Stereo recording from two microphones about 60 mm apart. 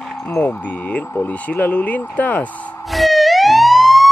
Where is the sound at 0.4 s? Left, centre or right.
Left.